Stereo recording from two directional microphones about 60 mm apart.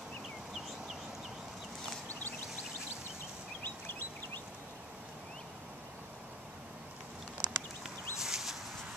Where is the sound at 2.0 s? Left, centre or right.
Left.